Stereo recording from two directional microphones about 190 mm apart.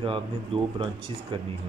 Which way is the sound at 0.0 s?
25° right (ahead or behind).